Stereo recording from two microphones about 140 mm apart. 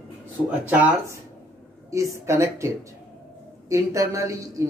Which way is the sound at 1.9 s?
20° right (ahead or behind).